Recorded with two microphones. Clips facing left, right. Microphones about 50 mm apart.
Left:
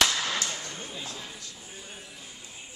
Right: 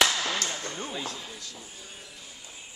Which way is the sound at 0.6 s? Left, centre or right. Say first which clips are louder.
Right 4 dB; right.